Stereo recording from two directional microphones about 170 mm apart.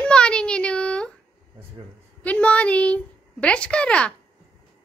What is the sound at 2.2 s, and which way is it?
Speech, 10° left (ahead or behind).